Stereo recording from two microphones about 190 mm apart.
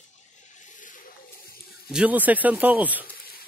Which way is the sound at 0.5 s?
40° left (ahead or behind).